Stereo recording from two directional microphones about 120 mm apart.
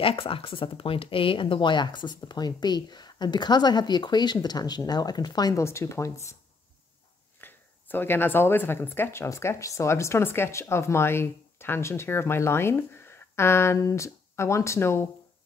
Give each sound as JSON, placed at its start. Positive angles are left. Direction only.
{"t": 0.0, "sound": "speech", "side_deg": 50}
{"t": 7.3, "sound": "speech", "side_deg": 15}